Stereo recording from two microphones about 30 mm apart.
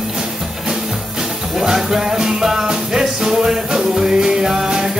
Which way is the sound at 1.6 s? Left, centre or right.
Centre.